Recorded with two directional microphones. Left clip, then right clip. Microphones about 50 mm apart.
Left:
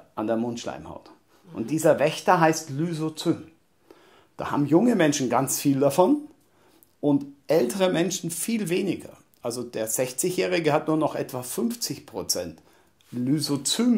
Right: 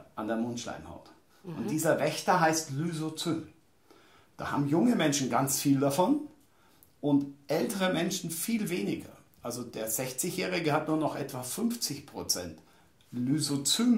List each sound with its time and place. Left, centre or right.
0.1 s speech: left
2.8 s speech: left
4.4 s speech: left